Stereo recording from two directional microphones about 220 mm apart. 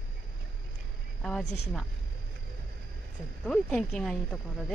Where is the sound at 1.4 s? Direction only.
30° left (ahead or behind).